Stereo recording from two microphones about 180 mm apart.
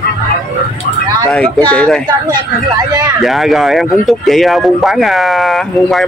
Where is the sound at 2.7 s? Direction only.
20° right (ahead or behind).